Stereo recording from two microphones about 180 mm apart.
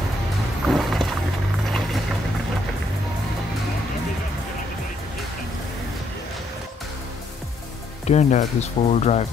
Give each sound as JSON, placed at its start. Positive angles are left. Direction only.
{"t": 0.7, "sound": "music", "side_deg": 0}
{"t": 8.1, "sound": "speech", "side_deg": 40}